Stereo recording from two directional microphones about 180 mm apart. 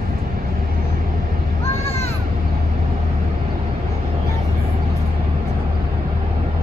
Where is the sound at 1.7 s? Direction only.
35° left (ahead or behind).